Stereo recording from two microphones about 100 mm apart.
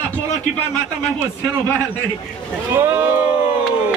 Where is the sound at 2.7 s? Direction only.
25° right (ahead or behind).